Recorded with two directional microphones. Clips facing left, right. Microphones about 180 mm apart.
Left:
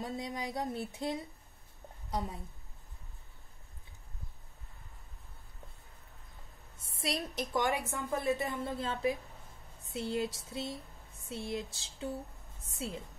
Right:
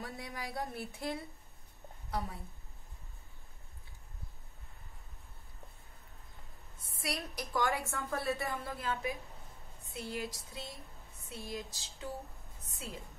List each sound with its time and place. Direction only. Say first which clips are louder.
0.0 s a woman's voice: left 5 dB; 20° left (ahead or behind)
6.9 s speech: left 4 dB; 25° left (ahead or behind)